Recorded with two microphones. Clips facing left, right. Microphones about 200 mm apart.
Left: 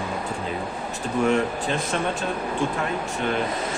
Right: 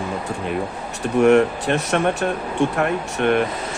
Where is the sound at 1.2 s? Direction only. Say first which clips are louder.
Right 8 dB; 70° right (ahead or behind).